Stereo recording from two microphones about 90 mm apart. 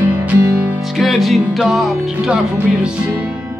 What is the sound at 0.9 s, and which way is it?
Music, centre (ahead or behind).